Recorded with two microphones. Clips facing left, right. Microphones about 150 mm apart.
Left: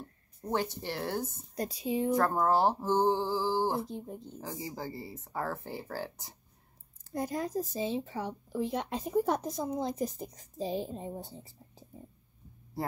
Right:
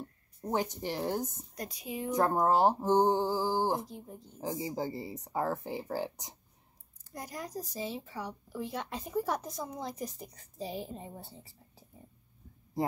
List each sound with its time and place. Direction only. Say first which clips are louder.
0.5 s speech: even; 15° right (ahead or behind)
1.5 s speech: left 7 dB; 30° left (ahead or behind)
2.0 s speech: right 1 dB; 20° right (ahead or behind)
3.9 s speech: left 6 dB; 20° left (ahead or behind)
4.4 s speech: right 6 dB; 20° right (ahead or behind)
7.1 s speech: left 8 dB; 25° left (ahead or behind)